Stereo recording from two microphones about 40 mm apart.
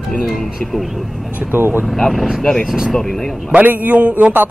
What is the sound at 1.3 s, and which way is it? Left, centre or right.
Speech, right.